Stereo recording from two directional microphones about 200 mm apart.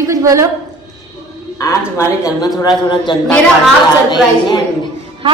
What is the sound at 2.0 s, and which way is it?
A woman's voice, 15° left (ahead or behind).